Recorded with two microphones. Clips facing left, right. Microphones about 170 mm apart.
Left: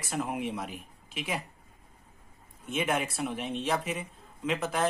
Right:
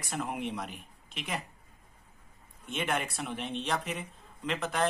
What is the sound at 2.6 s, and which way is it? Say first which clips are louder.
Speech: left 3 dB; 5° left (ahead or behind).